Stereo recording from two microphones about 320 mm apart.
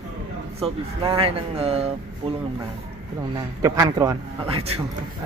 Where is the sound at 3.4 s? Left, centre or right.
Centre.